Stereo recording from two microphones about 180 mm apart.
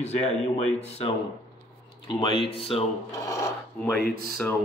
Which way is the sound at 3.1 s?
15° left (ahead or behind).